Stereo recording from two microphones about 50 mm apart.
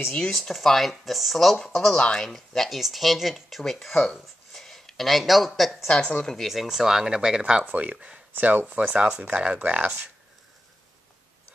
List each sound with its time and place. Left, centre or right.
0.4 s speech: centre
3.9 s speech: centre
4.5 s speech: centre
5.9 s a woman's voice: left
6.3 s speech: centre
7.6 s speech: right